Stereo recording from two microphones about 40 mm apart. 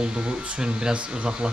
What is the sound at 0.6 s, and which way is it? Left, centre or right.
Speech, right.